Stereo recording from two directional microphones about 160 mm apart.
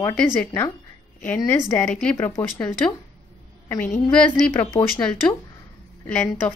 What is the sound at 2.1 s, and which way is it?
Speech, 15° left (ahead or behind).